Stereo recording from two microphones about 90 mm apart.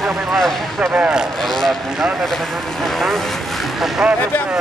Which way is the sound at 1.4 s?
5° left (ahead or behind).